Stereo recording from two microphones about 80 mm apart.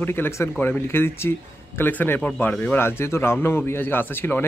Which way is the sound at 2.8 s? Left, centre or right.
Left.